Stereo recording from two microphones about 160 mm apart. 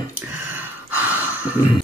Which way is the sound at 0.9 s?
10° right (ahead or behind).